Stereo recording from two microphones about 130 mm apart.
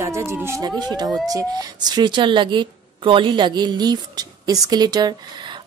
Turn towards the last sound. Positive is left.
turn(degrees=-30)  # may be behind; listen again after turning